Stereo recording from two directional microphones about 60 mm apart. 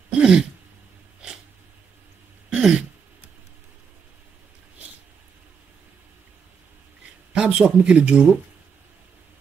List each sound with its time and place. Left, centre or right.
0.2 s throat clearing: centre
2.5 s throat clearing: centre
7.3 s speech: centre